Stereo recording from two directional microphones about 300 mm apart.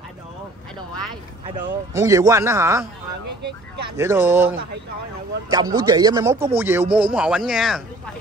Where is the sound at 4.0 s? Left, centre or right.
Centre.